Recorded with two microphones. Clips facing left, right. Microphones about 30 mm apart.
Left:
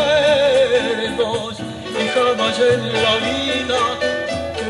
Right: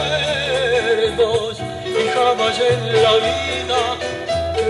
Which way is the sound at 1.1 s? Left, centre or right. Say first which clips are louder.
Right 3 dB; right.